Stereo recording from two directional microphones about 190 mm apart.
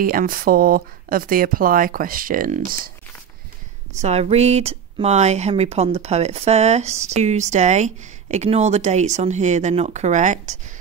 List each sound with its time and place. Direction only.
0.0 s speech: 50° right (ahead or behind)
4.0 s speech: 35° right (ahead or behind)